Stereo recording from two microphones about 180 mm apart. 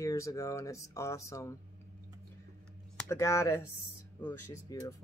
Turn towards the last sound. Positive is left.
turn(degrees=20)  # may be behind; listen again after turning